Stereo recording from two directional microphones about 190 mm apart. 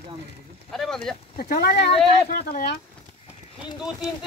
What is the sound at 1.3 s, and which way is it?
Speech, 55° left (ahead or behind).